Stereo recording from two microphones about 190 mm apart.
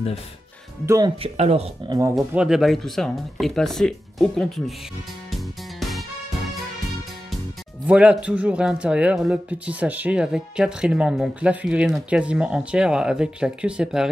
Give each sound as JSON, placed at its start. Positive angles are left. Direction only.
{"t": 0.8, "sound": "speech", "side_deg": -20}
{"t": 1.2, "sound": "speech", "side_deg": -35}
{"t": 1.9, "sound": "speech", "side_deg": -15}
{"t": 2.1, "sound": "speech", "side_deg": -5}
{"t": 5.3, "sound": "music", "side_deg": 0}
{"t": 7.8, "sound": "speech", "side_deg": -5}